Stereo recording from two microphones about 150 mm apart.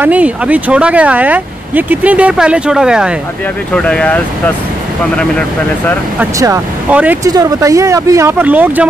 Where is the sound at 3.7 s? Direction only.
5° left (ahead or behind).